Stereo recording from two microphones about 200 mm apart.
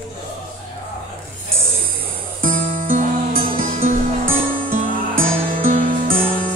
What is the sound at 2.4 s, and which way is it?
Music, 40° right (ahead or behind).